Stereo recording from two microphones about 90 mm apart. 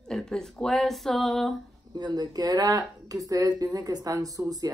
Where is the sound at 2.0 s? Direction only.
50° right (ahead or behind).